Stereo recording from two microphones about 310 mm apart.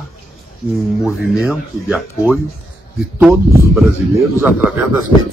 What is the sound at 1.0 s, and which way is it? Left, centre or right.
Speech, centre.